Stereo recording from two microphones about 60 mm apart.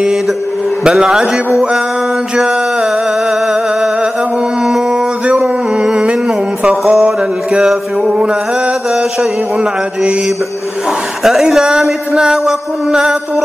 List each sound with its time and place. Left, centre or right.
0.8 s mantra: centre
5.4 s music: centre
6.9 s mantra: centre
11.2 s mantra: centre